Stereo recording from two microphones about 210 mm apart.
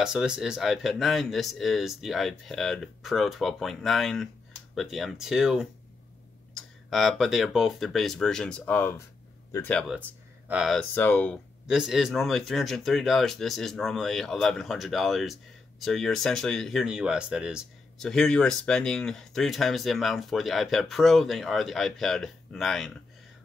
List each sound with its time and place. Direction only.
0.0 s speech: 5° right (ahead or behind)
6.9 s speech: centre (ahead or behind)
11.6 s speech: 5° right (ahead or behind)